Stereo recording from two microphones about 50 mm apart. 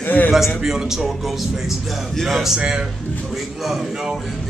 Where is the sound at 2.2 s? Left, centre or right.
Centre.